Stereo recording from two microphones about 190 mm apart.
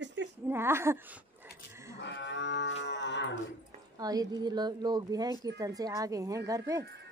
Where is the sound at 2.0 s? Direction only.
70° left (ahead or behind).